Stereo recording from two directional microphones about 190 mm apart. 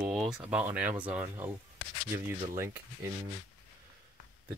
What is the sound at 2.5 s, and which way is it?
Speech, 15° right (ahead or behind).